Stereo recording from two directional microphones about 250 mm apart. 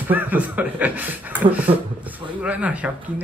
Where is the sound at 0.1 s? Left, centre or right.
Centre.